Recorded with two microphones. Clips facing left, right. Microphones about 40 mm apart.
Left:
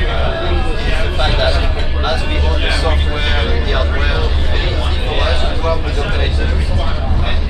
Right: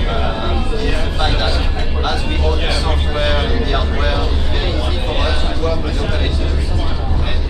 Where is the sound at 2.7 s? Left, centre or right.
Centre.